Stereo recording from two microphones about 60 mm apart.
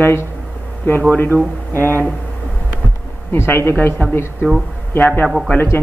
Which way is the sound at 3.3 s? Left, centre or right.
Left.